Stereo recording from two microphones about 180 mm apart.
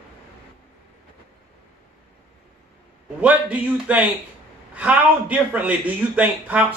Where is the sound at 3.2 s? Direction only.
10° right (ahead or behind).